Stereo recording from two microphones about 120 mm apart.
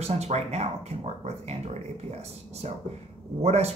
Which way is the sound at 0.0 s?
65° right (ahead or behind).